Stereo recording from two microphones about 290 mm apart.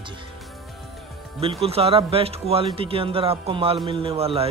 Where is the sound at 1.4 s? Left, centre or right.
Centre.